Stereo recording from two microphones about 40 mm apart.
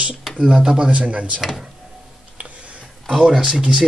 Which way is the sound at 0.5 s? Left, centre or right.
Centre.